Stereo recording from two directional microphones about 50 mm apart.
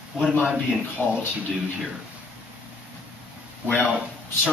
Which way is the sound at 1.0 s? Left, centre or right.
Left.